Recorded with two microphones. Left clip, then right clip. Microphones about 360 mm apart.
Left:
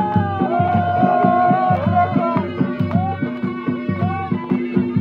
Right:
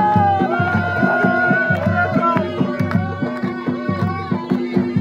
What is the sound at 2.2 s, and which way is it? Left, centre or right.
Music, right.